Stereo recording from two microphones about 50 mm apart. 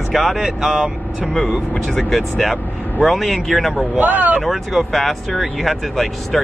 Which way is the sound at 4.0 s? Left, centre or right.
Right.